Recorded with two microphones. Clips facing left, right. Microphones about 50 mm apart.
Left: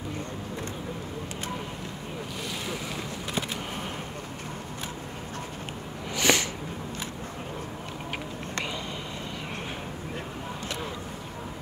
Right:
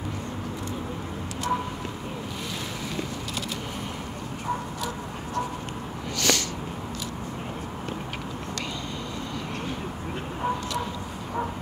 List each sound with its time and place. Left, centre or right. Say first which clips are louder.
6.1 s snort: left 2 dB; centre